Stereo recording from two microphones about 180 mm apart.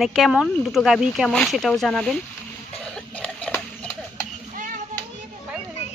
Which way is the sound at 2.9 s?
5° left (ahead or behind).